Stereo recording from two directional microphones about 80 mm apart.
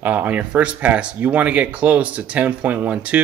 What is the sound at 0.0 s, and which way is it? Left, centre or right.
Speech, right.